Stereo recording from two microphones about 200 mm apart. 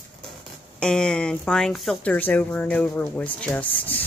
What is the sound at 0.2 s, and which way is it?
Speech, 5° left (ahead or behind).